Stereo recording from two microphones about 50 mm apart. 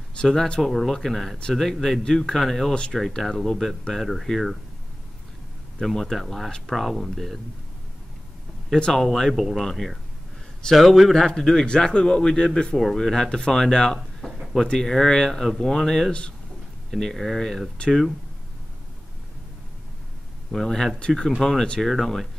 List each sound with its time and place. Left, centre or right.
0.1 s a sound: centre
0.6 s speech: centre
2.3 s speech: centre
5.8 s speech: centre
8.9 s speech: centre
9.3 s speech: centre
9.6 s speech: centre
14.2 s a sound: centre
14.7 s speech: centre
16.1 s speech: left
16.9 s speech: centre
20.5 s speech: centre
21.9 s speech: centre